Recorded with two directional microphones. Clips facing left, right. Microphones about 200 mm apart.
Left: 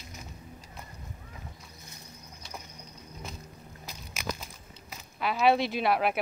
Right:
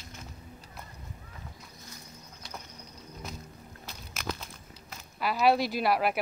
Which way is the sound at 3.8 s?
5° left (ahead or behind).